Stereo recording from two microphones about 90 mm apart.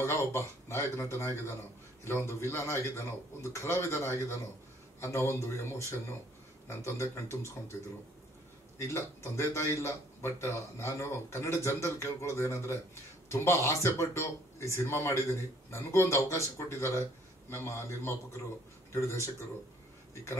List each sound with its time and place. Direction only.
0.0 s a man's voice: 30° left (ahead or behind)
8.7 s a man's voice: 30° left (ahead or behind)